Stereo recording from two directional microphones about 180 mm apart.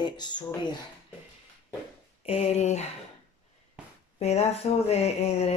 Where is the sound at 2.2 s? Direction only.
35° left (ahead or behind).